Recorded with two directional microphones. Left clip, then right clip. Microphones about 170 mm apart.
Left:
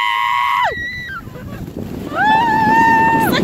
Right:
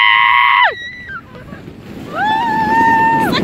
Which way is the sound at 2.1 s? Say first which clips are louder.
Left 2 dB; 70° right (ahead or behind).